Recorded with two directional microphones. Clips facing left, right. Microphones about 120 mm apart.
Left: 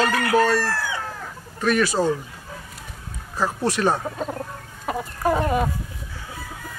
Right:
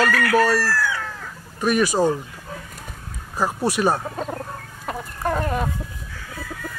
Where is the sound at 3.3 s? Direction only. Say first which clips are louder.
Right 1 dB; 10° right (ahead or behind).